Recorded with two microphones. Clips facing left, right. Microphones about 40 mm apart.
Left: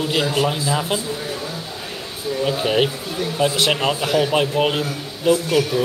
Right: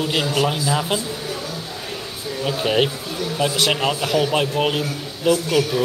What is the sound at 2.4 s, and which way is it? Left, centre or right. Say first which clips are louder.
Speech: even; centre.